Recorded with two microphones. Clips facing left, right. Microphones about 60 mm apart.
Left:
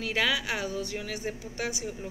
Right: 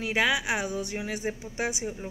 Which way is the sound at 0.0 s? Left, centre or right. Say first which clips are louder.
Right 2 dB; centre.